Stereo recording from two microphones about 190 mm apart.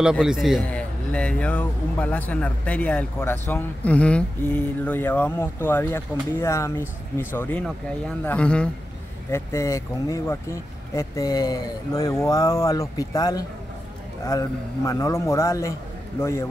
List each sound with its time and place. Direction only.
0.0 s a man's voice: 5° right (ahead or behind); by 13.4 s 20° left (ahead or behind)
14.9 s a man's voice: 15° left (ahead or behind)